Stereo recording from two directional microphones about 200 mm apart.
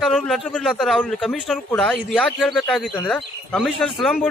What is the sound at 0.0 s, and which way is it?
A man's voice, centre (ahead or behind).